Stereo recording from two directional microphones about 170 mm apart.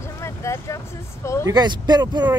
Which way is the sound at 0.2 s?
15° left (ahead or behind).